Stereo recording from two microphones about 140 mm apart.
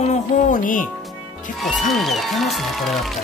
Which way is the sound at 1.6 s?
Centre (ahead or behind).